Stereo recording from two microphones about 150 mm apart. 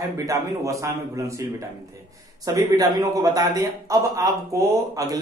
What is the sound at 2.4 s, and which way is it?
Speech, 20° right (ahead or behind).